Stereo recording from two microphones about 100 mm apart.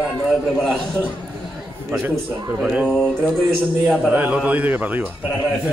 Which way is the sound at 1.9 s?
20° right (ahead or behind).